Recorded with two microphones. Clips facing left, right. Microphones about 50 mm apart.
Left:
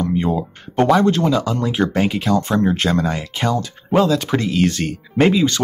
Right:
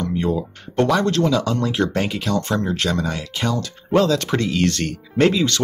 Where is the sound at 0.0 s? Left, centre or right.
Centre.